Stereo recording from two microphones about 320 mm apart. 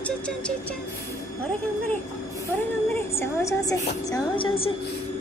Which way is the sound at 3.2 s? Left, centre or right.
Centre.